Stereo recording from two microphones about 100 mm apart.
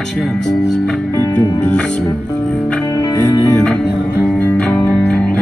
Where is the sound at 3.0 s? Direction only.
35° left (ahead or behind).